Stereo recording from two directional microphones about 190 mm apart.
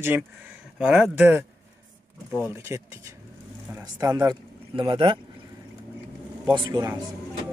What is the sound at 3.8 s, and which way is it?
Speech, 20° right (ahead or behind).